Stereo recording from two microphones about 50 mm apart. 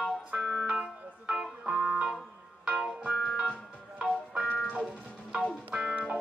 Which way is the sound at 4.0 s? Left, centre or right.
Centre.